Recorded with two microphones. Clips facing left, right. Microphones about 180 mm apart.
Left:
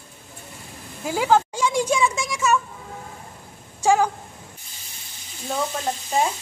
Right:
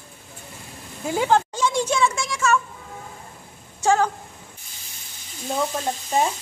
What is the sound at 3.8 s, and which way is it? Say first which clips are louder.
Speech: left 1 dB; 10° left (ahead or behind).